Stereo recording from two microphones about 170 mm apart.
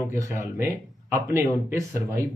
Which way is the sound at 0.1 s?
15° right (ahead or behind).